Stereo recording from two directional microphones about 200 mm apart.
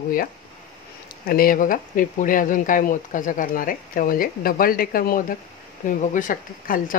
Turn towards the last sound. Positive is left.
turn(degrees=45)  # may be behind; listen again after turning